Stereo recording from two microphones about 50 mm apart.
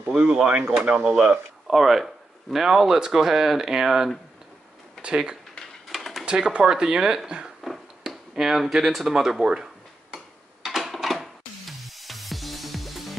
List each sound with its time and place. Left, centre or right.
0.2 s speech: right
1.7 s speech: centre
5.6 s a sound: centre
6.2 s speech: centre
7.6 s speech: centre
10.1 s music: centre